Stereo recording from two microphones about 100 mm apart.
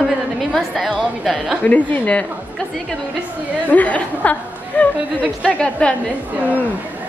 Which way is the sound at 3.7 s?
15° left (ahead or behind).